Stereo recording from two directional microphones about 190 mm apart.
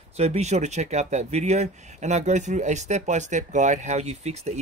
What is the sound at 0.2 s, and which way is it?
Speech, 35° right (ahead or behind).